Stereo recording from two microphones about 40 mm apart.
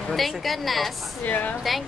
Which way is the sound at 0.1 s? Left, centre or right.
Centre.